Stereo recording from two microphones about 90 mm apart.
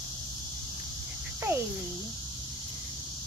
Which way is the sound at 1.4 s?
30° right (ahead or behind).